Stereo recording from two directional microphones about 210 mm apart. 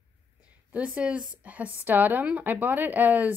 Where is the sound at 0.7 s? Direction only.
5° right (ahead or behind).